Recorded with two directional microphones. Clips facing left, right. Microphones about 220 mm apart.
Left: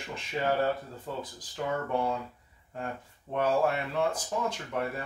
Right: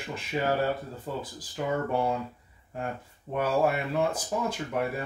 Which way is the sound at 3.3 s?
10° right (ahead or behind).